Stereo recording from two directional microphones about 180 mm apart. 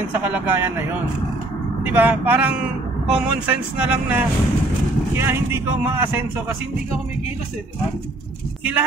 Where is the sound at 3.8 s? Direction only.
5° right (ahead or behind).